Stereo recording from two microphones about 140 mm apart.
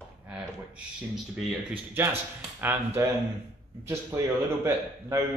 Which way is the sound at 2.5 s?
15° right (ahead or behind).